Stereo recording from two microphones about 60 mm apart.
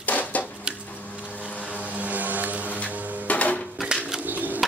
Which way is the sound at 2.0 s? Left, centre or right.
Right.